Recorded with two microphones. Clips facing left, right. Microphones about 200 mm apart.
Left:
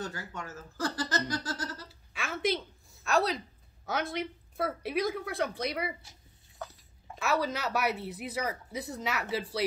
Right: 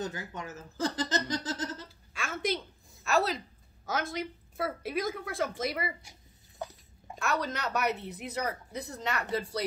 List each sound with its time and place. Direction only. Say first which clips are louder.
0.0 s speech: right 2 dB; 20° right (ahead or behind)
2.1 s a woman's voice: left 2 dB; centre (ahead or behind)
6.6 s a sound: right 3 dB; 15° right (ahead or behind)
7.2 s speech: left 2 dB; 5° left (ahead or behind)